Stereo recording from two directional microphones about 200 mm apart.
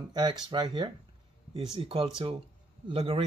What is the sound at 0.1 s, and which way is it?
Speech, 20° right (ahead or behind).